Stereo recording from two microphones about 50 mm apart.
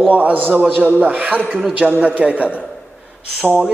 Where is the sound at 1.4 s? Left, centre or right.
Centre.